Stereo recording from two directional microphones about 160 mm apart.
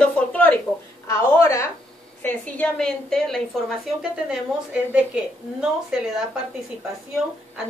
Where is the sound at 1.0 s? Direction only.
20° left (ahead or behind); by 3.4 s 5° left (ahead or behind).